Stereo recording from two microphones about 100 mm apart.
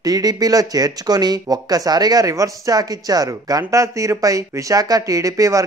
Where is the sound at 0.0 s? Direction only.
40° right (ahead or behind).